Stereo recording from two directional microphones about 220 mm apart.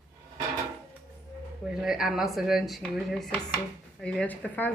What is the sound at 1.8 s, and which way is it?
Speech, centre (ahead or behind).